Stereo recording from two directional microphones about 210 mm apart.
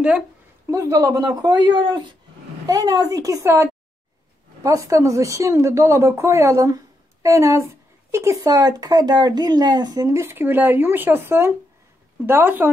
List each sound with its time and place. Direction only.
0.7 s speech: 15° right (ahead or behind)